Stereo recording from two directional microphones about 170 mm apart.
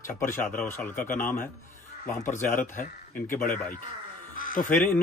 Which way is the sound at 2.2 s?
50° left (ahead or behind).